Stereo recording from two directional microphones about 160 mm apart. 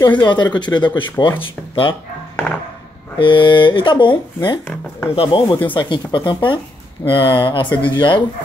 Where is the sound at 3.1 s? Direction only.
30° left (ahead or behind).